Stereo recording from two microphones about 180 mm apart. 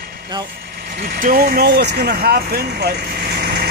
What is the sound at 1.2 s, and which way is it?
Speech, 50° right (ahead or behind).